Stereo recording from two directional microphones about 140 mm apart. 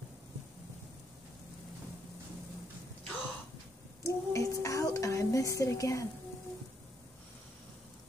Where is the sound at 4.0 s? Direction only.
20° left (ahead or behind).